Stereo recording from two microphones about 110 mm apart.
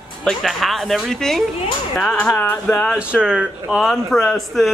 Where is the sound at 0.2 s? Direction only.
5° left (ahead or behind); by 2.9 s 20° left (ahead or behind).